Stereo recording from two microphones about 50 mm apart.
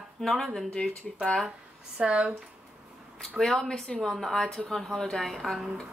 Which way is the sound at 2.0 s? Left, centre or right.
Right.